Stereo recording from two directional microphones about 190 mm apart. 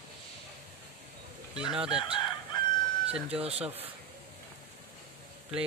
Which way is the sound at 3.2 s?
30° right (ahead or behind).